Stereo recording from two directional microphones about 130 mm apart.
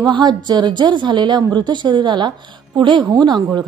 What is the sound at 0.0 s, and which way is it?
A woman's voice, 35° right (ahead or behind).